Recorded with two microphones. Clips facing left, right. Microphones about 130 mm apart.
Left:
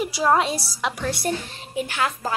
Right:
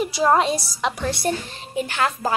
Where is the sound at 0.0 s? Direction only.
5° left (ahead or behind).